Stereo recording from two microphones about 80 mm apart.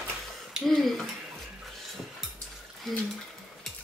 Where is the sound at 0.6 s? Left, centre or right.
Centre.